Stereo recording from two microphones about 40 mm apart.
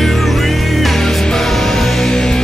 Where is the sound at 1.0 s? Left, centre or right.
Centre.